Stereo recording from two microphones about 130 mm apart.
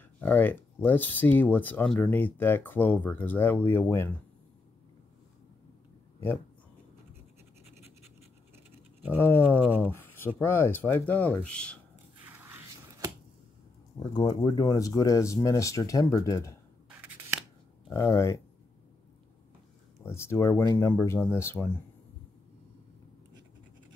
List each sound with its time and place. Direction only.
0.2 s speech: 15° left (ahead or behind)
9.6 s speech: 15° right (ahead or behind)
9.8 s speech: 15° left (ahead or behind)
13.9 s speech: 30° left (ahead or behind)
17.9 s speech: 20° left (ahead or behind)
20.0 s speech: 20° left (ahead or behind)